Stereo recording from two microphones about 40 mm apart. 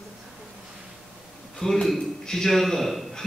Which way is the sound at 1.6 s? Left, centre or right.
Centre.